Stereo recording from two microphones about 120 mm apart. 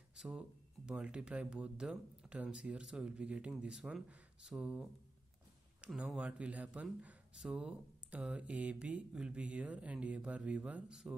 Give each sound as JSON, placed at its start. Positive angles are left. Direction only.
{"t": 0.1, "sound": "speech", "side_deg": -5}